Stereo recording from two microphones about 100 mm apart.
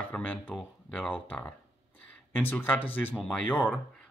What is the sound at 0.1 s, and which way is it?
Speech, 15° left (ahead or behind).